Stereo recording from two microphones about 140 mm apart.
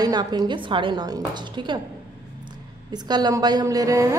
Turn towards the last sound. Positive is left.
turn(degrees=-25)  # may be behind; listen again after turning